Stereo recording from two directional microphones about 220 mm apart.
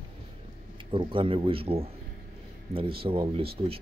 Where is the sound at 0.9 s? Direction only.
25° right (ahead or behind).